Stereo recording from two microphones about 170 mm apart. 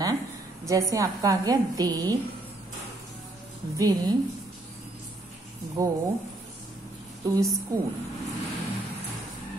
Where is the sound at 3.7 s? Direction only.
20° right (ahead or behind).